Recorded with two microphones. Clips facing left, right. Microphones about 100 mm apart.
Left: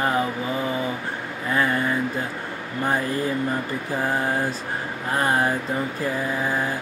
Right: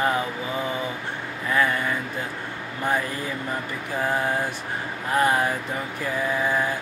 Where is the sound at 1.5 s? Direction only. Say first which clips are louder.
Even; 35° left (ahead or behind).